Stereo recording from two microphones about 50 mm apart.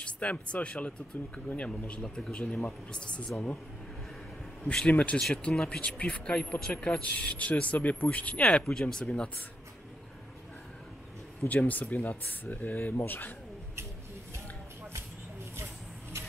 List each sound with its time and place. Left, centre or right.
0.0 s speech: left
2.0 s speech: centre
4.9 s speech: left
5.3 s speech: centre
8.5 s speech: centre
11.4 s speech: left
15.5 s vehicle: right